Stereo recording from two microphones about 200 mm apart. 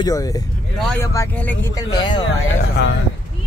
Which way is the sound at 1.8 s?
20° left (ahead or behind).